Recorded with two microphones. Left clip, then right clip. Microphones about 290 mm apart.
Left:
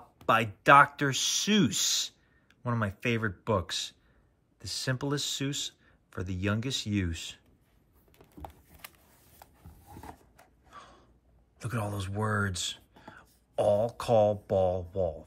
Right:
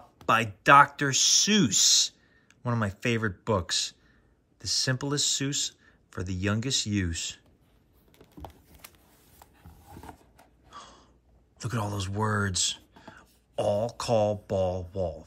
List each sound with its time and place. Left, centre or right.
0.3 s speech: centre
8.4 s a sound: centre
11.5 s speech: centre